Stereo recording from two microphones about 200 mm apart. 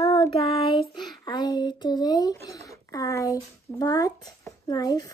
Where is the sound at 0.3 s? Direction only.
25° left (ahead or behind).